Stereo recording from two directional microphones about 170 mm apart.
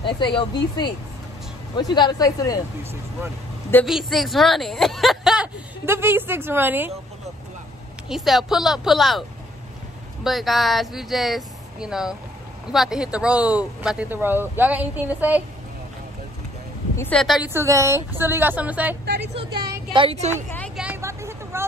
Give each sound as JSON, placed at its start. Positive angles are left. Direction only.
{"t": 0.0, "sound": "speech", "side_deg": 30}
{"t": 2.0, "sound": "speech", "side_deg": 25}
{"t": 2.8, "sound": "speech", "side_deg": -15}
{"t": 3.8, "sound": "speech", "side_deg": 0}
{"t": 5.9, "sound": "speech", "side_deg": -15}
{"t": 8.1, "sound": "speech", "side_deg": 0}
{"t": 10.2, "sound": "speech", "side_deg": 0}
{"t": 16.9, "sound": "a woman's voice", "side_deg": 15}
{"t": 17.2, "sound": "speech", "side_deg": 0}
{"t": 17.5, "sound": "speech", "side_deg": -15}
{"t": 19.0, "sound": "speech", "side_deg": -80}
{"t": 19.9, "sound": "speech", "side_deg": -30}
{"t": 20.7, "sound": "vehicle", "side_deg": -5}